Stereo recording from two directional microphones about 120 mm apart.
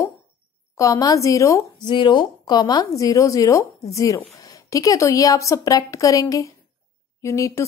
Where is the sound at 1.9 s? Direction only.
40° left (ahead or behind).